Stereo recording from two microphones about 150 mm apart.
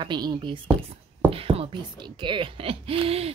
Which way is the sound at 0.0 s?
30° right (ahead or behind).